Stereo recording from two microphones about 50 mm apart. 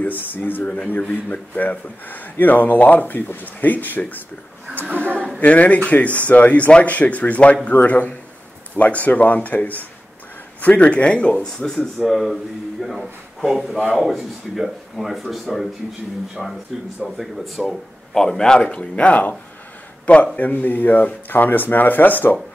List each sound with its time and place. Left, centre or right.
0.0 s speech: left
5.4 s speech: left
11.4 s speech: centre; by 19.3 s left
20.3 s speech: left